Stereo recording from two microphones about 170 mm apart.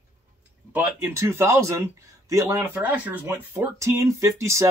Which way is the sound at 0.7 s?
15° right (ahead or behind).